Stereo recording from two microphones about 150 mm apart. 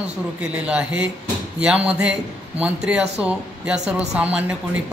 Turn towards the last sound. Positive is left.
turn(degrees=-5)  # may be behind; listen again after turning